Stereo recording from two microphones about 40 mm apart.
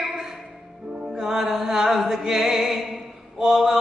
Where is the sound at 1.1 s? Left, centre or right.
Centre.